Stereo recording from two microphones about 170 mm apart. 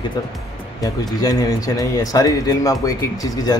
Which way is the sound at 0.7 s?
20° left (ahead or behind).